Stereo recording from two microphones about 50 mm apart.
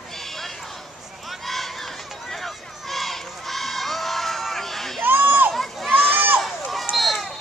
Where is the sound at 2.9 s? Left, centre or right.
Centre.